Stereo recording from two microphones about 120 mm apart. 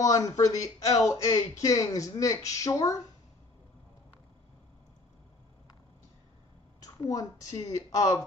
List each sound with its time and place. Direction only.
0.0 s speech: 30° left (ahead or behind)
6.8 s a sound: 30° left (ahead or behind)
7.5 s speech: 30° left (ahead or behind)